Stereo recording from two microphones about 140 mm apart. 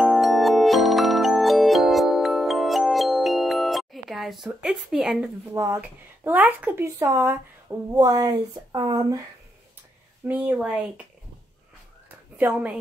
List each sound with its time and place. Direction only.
0.0 s music: centre (ahead or behind)
5.5 s speech: 20° right (ahead or behind)
10.2 s speech: 15° right (ahead or behind)
12.4 s speech: 10° right (ahead or behind)